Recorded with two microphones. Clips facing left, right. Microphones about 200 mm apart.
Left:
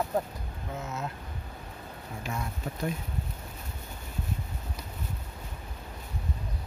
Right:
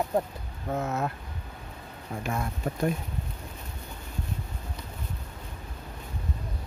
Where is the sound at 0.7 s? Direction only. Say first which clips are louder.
Right 7 dB; 55° right (ahead or behind).